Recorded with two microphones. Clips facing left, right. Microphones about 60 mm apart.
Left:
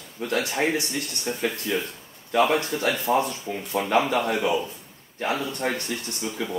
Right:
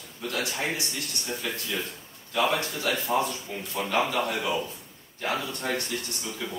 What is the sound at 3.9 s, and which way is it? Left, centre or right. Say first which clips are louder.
Speech: left 4 dB; left.